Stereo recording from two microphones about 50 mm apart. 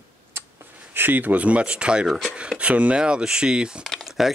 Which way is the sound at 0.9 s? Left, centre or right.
Right.